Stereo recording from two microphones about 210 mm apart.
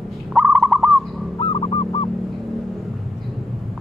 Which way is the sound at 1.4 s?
20° left (ahead or behind).